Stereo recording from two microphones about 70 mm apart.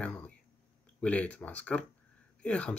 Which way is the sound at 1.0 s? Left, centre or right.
Centre.